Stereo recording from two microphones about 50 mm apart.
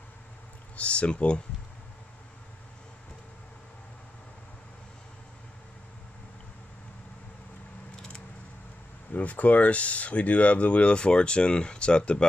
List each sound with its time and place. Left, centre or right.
0.7 s speech: left
7.9 s a sound: centre
9.1 s speech: left